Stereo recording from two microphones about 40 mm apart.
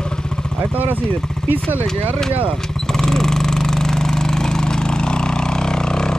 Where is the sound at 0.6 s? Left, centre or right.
Right.